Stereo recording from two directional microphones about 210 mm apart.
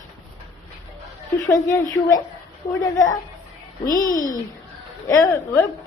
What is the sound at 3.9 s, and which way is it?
Speech, 40° left (ahead or behind).